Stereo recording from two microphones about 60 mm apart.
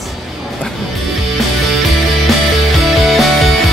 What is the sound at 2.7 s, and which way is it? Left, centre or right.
Music, centre.